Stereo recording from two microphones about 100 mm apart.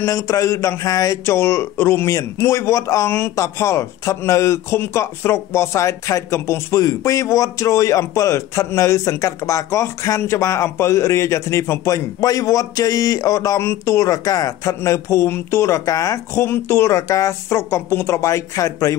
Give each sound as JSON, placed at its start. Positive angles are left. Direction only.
{"t": 0.0, "sound": "speech", "side_deg": 30}
{"t": 16.4, "sound": "speech", "side_deg": 25}